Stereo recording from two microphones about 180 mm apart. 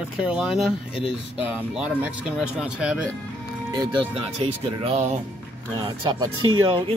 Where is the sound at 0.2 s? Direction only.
5° right (ahead or behind).